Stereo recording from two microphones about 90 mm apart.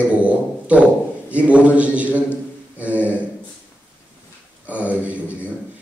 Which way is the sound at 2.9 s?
20° left (ahead or behind).